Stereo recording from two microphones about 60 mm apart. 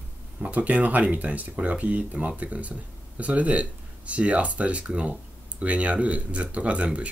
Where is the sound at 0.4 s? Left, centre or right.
Right.